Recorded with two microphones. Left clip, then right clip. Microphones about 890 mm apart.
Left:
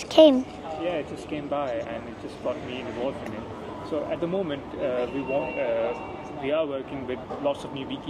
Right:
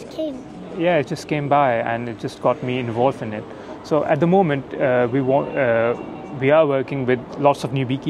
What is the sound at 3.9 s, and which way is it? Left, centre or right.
Speech, right.